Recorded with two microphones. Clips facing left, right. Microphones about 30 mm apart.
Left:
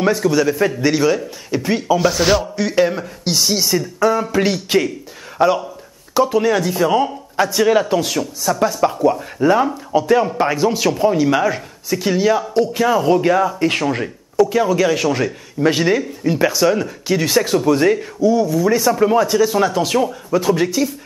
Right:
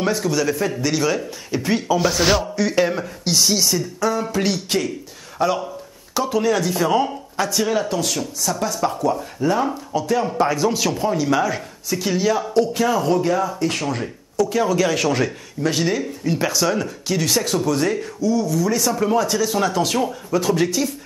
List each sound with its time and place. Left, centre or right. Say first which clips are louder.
0.0 s speech: left 5 dB; centre
7.3 s speech: left 6 dB; centre
13.2 s speech: left 5 dB; left
14.6 s speech: left 3 dB; centre
15.6 s speech: left 5 dB; centre